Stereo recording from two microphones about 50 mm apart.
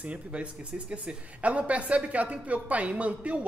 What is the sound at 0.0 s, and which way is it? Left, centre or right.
Speech, right.